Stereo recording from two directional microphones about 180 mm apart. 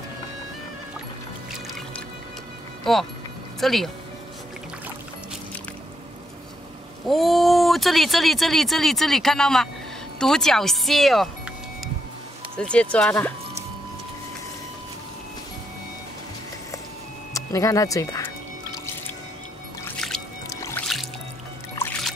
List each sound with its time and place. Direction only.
2.8 s speech: centre (ahead or behind)
7.1 s speech: centre (ahead or behind)
12.5 s speech: 5° left (ahead or behind)
17.3 s speech: 20° left (ahead or behind)
20.4 s music: 15° left (ahead or behind)
20.8 s music: centre (ahead or behind)